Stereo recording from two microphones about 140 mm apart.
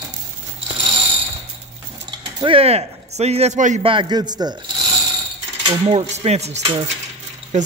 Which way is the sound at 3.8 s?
35° right (ahead or behind).